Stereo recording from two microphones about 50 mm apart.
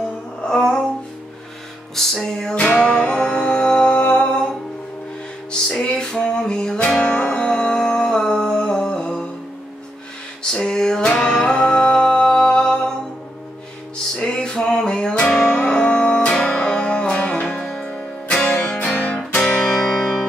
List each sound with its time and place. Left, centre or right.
0.5 s music: centre
2.0 s music: centre
2.5 s music: left
5.8 s a sound: centre
7.0 s music: left
10.4 s music: centre
14.1 s music: centre
15.5 s music: left
19.4 s music: centre